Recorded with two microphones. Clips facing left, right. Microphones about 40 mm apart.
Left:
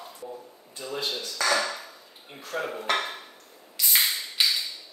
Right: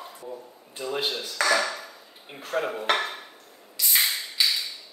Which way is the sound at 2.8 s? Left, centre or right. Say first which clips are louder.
Right 1 dB; right.